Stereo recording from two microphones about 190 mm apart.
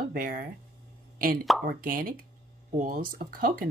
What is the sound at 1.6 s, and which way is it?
Speech, 50° right (ahead or behind).